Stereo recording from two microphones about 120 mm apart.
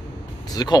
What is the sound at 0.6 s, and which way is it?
Speech, 35° left (ahead or behind).